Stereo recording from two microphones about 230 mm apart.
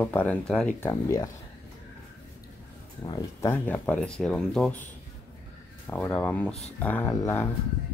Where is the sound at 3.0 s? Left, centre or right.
Centre.